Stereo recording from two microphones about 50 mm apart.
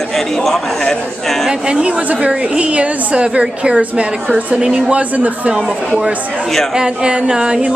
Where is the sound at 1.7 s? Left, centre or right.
Right.